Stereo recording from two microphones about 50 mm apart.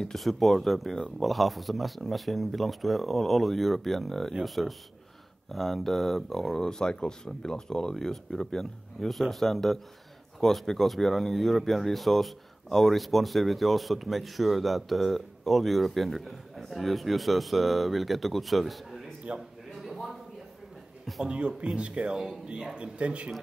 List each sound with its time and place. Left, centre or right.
0.0 s speech: centre
19.3 s speech: right
21.2 s speech: centre